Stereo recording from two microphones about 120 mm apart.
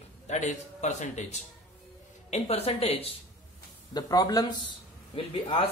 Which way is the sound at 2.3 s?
60° left (ahead or behind).